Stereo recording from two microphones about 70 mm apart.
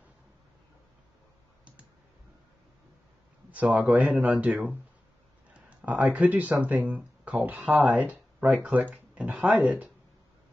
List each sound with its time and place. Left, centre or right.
3.5 s speech: right
5.5 s a sound: centre
6.1 s speech: right